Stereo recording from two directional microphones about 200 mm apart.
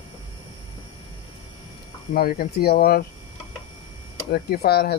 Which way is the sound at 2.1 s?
45° left (ahead or behind).